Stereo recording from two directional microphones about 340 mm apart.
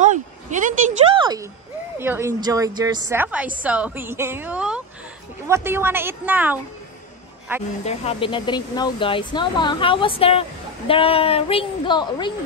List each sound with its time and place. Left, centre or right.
0.0 s a sound: right
2.0 s a woman's voice: centre
7.8 s speech: centre